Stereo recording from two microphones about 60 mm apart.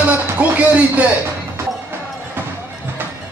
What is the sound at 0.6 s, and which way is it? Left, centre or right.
Speech, right.